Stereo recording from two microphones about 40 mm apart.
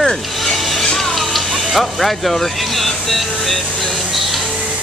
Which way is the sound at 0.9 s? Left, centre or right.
Centre.